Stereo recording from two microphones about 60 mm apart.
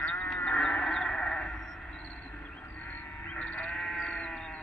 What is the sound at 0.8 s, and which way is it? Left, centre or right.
Sheep, centre.